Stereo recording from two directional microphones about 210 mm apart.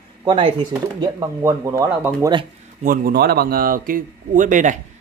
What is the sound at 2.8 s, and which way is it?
Speech, 45° right (ahead or behind).